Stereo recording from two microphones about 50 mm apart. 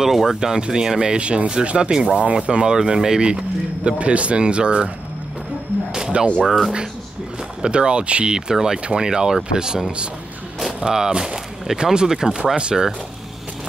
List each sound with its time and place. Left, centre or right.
0.0 s speech: centre
6.4 s speech: centre
7.6 s speech: centre